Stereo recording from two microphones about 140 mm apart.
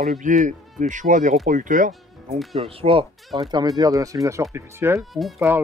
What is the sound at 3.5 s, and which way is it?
Speech, 30° right (ahead or behind).